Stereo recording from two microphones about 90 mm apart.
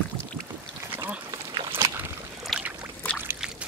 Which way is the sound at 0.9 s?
20° right (ahead or behind).